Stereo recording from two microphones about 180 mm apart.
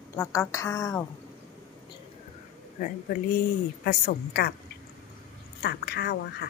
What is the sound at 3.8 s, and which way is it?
Speech, 60° left (ahead or behind).